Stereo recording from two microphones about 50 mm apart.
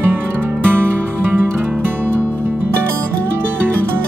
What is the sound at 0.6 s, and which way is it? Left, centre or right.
Music, right.